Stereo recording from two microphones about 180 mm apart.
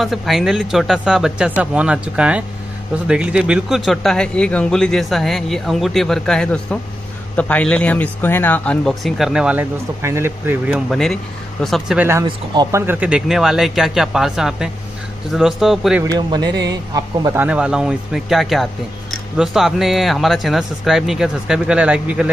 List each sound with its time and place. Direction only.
0.0 s a man's voice: centre (ahead or behind)
10.9 s a man's voice: centre (ahead or behind)
12.0 s a man's voice: 15° right (ahead or behind)
16.1 s a man's voice: 25° right (ahead or behind); by 22.3 s 5° right (ahead or behind)